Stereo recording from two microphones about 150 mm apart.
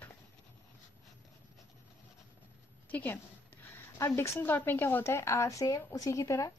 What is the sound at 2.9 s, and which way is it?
A woman's voice, 10° left (ahead or behind).